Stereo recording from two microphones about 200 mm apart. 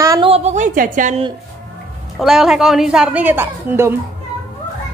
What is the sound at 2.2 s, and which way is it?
A woman's voice, centre (ahead or behind).